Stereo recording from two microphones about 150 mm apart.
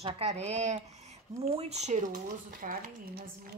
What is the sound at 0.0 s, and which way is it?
Speech, 45° right (ahead or behind).